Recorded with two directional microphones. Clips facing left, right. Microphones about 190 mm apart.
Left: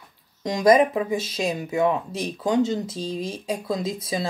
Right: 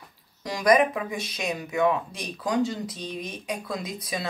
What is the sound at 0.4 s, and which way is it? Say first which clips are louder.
Speech: left 4 dB; 25° left (ahead or behind).